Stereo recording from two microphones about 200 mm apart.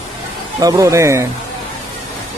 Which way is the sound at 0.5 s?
15° right (ahead or behind).